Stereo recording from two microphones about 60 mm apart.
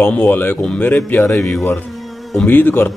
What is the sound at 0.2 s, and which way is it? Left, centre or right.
Speech, left.